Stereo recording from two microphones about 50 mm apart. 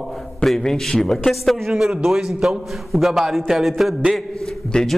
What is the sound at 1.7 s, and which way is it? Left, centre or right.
A man's voice, centre.